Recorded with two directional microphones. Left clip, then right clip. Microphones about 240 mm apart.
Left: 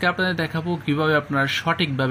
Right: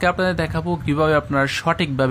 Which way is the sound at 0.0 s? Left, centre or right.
Right.